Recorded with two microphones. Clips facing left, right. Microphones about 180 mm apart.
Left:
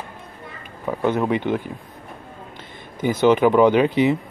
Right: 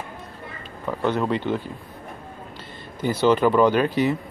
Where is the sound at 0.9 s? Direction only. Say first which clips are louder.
Left 2 dB; 10° left (ahead or behind).